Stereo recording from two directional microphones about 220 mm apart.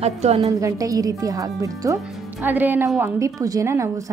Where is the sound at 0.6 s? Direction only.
15° right (ahead or behind).